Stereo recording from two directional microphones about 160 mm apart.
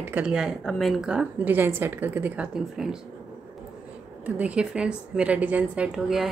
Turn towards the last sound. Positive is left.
turn(degrees=-5)  # may be behind; listen again after turning